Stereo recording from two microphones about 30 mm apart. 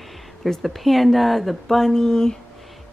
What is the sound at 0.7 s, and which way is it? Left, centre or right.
Speech, centre.